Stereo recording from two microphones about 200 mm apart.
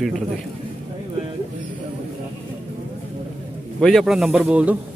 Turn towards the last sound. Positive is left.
turn(degrees=-5)  # may be behind; listen again after turning